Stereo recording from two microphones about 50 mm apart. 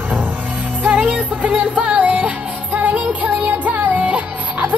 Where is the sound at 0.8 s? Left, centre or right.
Right.